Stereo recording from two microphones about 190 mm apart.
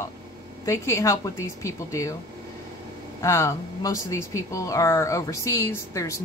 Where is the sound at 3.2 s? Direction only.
15° left (ahead or behind).